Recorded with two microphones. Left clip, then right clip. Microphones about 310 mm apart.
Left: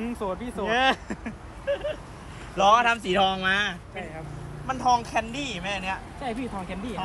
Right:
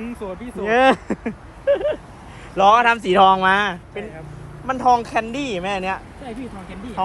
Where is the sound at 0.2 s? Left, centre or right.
Centre.